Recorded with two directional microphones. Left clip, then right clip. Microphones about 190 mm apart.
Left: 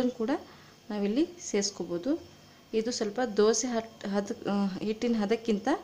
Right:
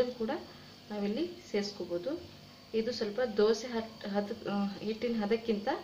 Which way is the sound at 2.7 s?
50° left (ahead or behind).